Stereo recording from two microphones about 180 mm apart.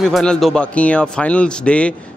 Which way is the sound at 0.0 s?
5° left (ahead or behind).